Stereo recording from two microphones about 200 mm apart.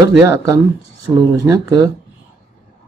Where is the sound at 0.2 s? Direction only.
15° right (ahead or behind).